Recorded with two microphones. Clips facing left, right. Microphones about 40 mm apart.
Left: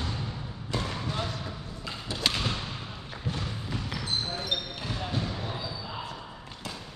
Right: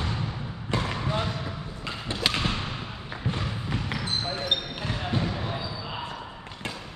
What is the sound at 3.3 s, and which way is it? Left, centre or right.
Basketball bounce, right.